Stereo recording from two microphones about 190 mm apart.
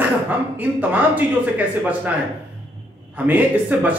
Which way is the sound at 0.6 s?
10° right (ahead or behind).